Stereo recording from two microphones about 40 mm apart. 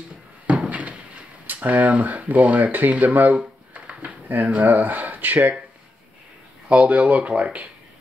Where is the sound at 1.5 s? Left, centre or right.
Right.